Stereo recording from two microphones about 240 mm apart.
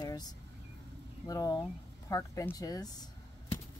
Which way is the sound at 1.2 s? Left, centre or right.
Centre.